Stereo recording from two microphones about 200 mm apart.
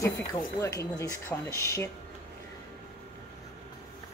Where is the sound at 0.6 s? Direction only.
15° left (ahead or behind).